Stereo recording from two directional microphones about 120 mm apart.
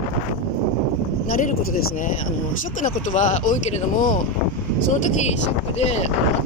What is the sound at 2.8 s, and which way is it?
Speech, 90° left.